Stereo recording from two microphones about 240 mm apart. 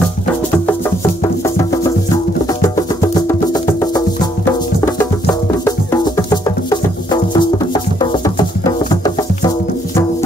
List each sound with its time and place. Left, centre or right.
3.2 s music: centre